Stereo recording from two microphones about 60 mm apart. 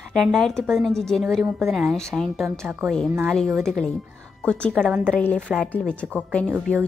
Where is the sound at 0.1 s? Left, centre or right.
Centre.